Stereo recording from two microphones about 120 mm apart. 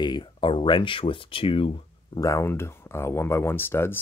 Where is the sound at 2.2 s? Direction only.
25° left (ahead or behind).